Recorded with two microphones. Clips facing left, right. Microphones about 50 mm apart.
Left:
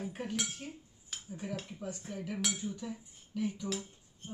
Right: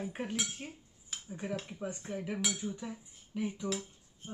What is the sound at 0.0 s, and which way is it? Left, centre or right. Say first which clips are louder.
Speech: right 1 dB; right.